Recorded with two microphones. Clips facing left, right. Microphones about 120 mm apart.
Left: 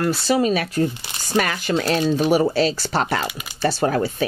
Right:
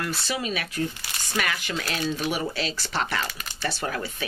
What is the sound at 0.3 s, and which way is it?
Speech, 40° left (ahead or behind).